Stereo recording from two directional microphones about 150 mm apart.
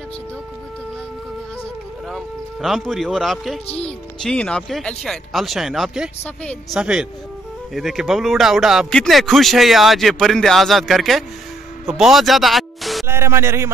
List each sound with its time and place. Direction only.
2.0 s speech: centre (ahead or behind)
11.8 s a sound: 5° right (ahead or behind)
13.0 s speech: 15° right (ahead or behind)